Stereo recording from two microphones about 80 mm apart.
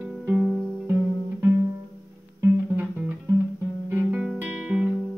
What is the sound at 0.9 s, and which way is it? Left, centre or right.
Music, right.